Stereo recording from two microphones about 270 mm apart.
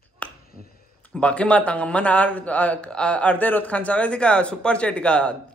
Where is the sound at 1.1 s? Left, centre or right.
Centre.